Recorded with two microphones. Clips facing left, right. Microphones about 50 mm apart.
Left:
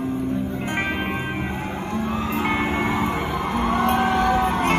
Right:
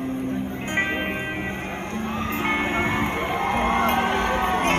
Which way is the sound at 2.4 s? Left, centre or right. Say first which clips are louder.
Even; right.